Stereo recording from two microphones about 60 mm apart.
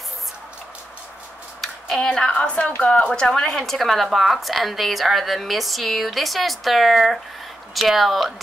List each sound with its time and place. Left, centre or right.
2.0 s a woman's voice: centre